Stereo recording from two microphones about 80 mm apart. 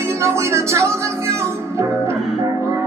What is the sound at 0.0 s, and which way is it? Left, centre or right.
Music, right.